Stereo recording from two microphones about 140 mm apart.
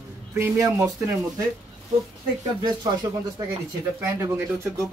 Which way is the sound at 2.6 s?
30° right (ahead or behind).